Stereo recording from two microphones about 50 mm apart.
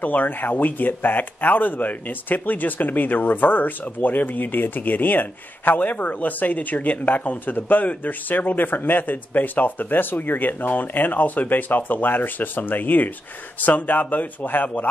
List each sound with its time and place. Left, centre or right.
0.0 s speech: left